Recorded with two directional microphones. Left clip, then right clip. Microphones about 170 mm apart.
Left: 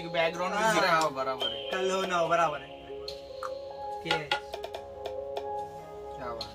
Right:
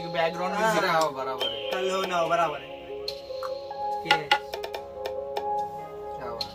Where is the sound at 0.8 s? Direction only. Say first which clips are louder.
Right 1 dB; centre (ahead or behind).